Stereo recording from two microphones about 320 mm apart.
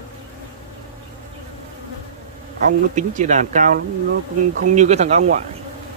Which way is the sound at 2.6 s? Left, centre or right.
Right.